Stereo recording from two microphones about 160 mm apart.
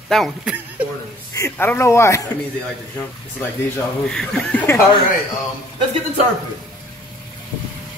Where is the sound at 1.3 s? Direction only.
15° left (ahead or behind).